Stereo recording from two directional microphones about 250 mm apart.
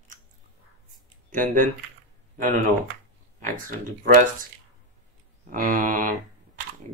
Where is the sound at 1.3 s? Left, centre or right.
Right.